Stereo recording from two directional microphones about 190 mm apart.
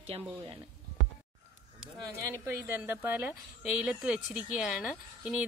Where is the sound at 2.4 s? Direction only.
10° right (ahead or behind).